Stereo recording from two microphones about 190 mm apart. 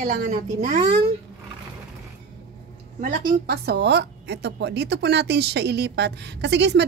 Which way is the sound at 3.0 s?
50° right (ahead or behind).